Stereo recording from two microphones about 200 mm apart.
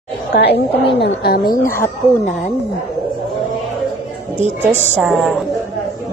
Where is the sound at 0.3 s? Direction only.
55° left (ahead or behind).